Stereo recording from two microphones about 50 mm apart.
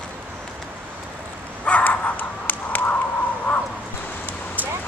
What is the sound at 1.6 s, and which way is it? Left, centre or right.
Dog, left.